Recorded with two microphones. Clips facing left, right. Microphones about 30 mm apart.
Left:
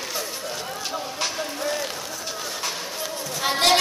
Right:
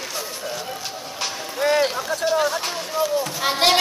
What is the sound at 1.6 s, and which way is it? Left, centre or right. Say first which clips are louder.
Vehicle: right 11 dB; right.